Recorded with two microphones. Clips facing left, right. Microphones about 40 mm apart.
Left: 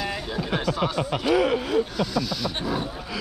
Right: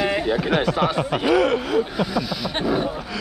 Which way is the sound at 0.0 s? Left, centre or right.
Right.